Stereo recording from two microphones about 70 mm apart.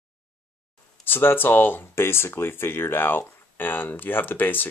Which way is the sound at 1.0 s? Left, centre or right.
Left.